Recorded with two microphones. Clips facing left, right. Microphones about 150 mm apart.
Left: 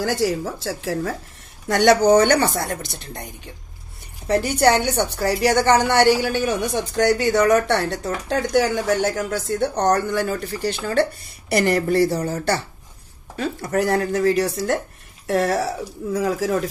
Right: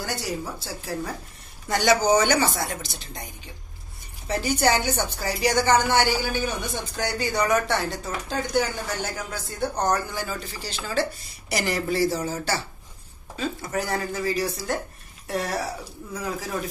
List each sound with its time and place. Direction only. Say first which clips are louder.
0.0 s speech: left 9 dB; 90° left
1.7 s speech: left 6 dB; 65° left (ahead or behind)
4.3 s a woman's voice: left 5 dB; 65° left (ahead or behind)
15.2 s speech: left 8 dB; 90° left